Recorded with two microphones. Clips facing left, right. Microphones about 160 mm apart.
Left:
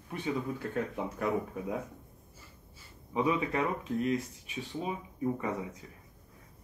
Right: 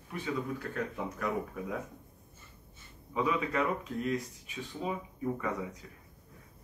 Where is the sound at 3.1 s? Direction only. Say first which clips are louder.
Left 2 dB; 25° left (ahead or behind).